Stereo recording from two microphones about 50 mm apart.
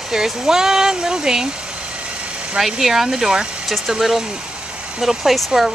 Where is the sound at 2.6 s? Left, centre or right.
Centre.